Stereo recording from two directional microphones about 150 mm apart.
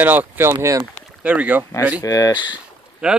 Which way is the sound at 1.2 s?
10° right (ahead or behind).